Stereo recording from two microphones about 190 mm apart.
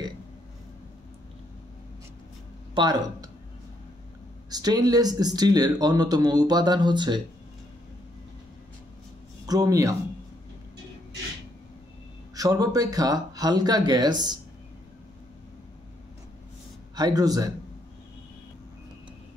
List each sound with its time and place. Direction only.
2.7 s speech: 20° right (ahead or behind)
4.5 s speech: 20° right (ahead or behind)
9.5 s speech: 20° right (ahead or behind)
12.4 s speech: 20° right (ahead or behind)
16.9 s speech: 20° right (ahead or behind)